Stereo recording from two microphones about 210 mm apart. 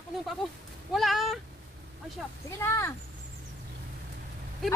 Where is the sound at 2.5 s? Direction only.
15° left (ahead or behind).